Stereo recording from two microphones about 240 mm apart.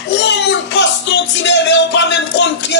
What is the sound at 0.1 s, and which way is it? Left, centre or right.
Music, left.